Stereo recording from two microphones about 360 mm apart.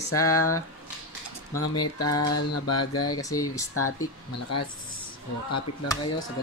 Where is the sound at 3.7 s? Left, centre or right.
Left.